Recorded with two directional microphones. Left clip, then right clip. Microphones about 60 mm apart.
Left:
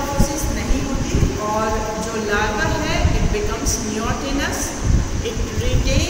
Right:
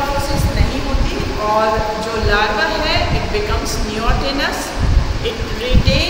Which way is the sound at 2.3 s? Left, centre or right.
Left.